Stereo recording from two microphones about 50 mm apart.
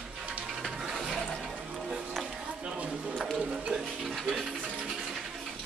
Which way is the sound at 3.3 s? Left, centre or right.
Centre.